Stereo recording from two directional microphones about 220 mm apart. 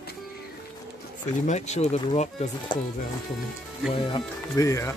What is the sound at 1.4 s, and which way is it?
Speech, 30° left (ahead or behind).